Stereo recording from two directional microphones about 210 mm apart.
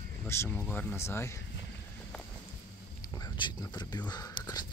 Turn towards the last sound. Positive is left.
turn(degrees=20)  # may be behind; listen again after turning